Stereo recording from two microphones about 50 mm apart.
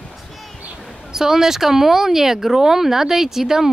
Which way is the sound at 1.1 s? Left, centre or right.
Centre.